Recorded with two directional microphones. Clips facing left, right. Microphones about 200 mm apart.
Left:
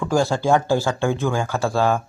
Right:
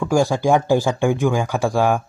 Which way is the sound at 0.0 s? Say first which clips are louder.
Right 2 dB; 15° right (ahead or behind).